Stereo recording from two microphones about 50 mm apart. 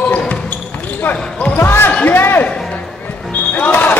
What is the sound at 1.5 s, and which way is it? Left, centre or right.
Basketball bounce, left.